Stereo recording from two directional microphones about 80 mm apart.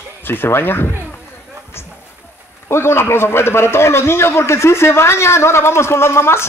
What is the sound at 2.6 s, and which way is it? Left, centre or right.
A man's voice, left.